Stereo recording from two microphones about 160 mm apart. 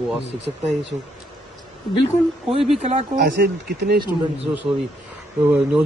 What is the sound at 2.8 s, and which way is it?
Speech, 45° right (ahead or behind).